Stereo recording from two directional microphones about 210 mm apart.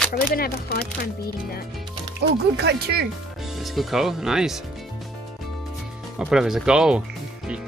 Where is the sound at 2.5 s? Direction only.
50° right (ahead or behind).